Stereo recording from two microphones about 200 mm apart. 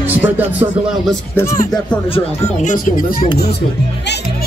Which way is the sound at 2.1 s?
30° left (ahead or behind).